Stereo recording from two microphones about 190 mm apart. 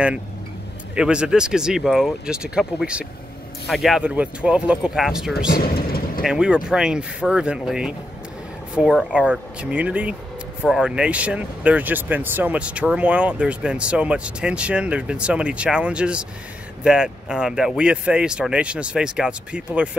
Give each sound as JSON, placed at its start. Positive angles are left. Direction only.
{"t": 0.9, "sound": "speech", "side_deg": -5}
{"t": 5.5, "sound": "vehicle", "side_deg": 50}
{"t": 6.2, "sound": "speech", "side_deg": -5}